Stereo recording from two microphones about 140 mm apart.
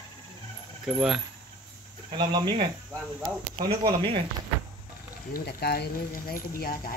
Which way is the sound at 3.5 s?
90° right.